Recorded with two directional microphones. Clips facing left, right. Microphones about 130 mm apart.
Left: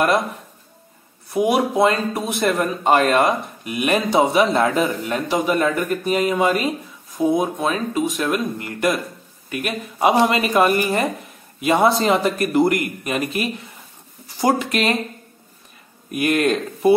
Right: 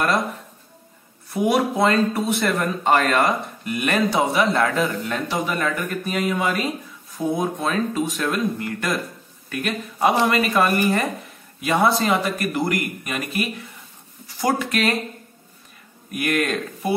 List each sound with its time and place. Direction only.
1.3 s speech: 20° left (ahead or behind)
7.2 s speech: 10° left (ahead or behind)
16.1 s speech: 25° left (ahead or behind)